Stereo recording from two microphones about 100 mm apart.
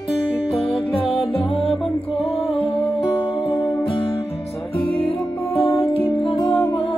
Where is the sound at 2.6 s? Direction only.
75° left (ahead or behind).